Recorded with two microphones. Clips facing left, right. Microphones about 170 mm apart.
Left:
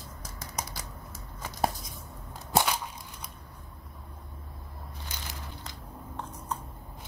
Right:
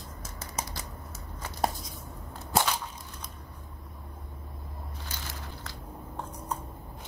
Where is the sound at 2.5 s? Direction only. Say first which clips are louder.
Left 1 dB; 10° left (ahead or behind).